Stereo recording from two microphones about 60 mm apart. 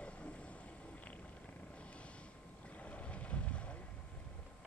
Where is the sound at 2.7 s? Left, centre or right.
Left.